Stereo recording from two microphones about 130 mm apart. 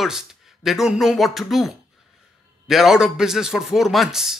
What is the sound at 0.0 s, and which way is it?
A man's voice, 5° right (ahead or behind).